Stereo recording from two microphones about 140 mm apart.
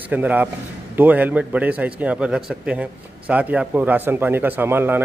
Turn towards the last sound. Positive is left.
turn(degrees=-15)  # may be behind; listen again after turning